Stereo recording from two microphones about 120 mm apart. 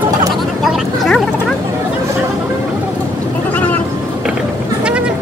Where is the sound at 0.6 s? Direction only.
Centre (ahead or behind).